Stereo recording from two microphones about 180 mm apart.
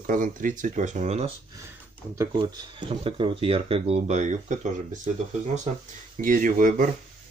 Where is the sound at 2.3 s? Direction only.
25° right (ahead or behind); by 6.9 s 50° right (ahead or behind).